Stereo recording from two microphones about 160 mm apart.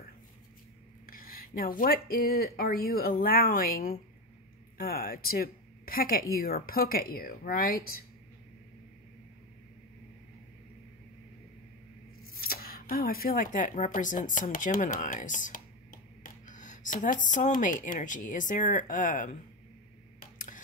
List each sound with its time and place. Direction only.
1.0 s speech: 65° left (ahead or behind)
12.4 s speech: 70° left (ahead or behind); by 19.3 s 55° left (ahead or behind)
20.3 s a sound: 55° left (ahead or behind)